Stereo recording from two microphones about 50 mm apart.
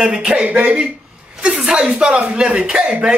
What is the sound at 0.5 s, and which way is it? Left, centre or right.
Speech, right.